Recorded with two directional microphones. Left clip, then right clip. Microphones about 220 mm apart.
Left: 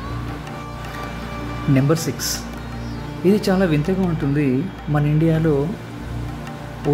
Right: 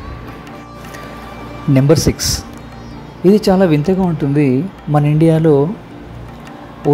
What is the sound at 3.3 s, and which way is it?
Speech, 15° right (ahead or behind).